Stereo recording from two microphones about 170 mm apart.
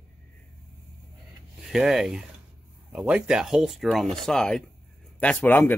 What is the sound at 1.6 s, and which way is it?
Speech, 5° right (ahead or behind).